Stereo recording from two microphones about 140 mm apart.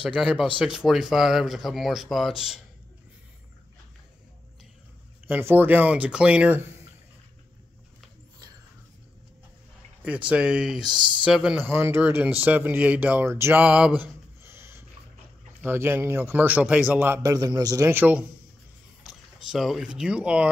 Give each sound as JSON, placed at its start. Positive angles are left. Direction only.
{"t": 0.0, "sound": "speech", "side_deg": -10}
{"t": 5.2, "sound": "speech", "side_deg": -15}
{"t": 10.0, "sound": "speech", "side_deg": -10}
{"t": 11.6, "sound": "speech", "side_deg": -15}
{"t": 17.2, "sound": "a man's voice", "side_deg": -25}
{"t": 19.0, "sound": "speech", "side_deg": 0}